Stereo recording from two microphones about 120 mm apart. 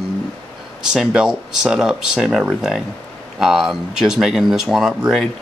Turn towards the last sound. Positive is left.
turn(degrees=-5)  # may be behind; listen again after turning